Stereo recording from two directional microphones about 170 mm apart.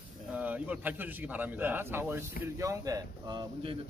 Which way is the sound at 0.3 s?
10° right (ahead or behind).